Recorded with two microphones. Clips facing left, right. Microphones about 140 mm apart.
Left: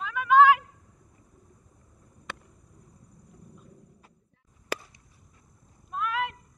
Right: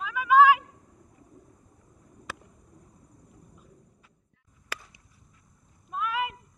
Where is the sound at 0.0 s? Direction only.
5° right (ahead or behind).